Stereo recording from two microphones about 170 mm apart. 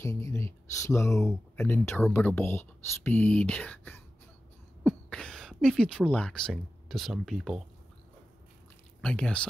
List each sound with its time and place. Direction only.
0.0 s speech: 15° left (ahead or behind); by 7.6 s centre (ahead or behind)
9.0 s speech: 5° left (ahead or behind)